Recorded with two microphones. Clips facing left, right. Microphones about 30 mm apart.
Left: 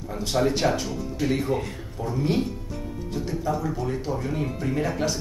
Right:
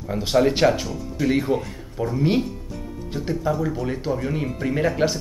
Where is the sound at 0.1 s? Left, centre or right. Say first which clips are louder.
Right 5 dB; right.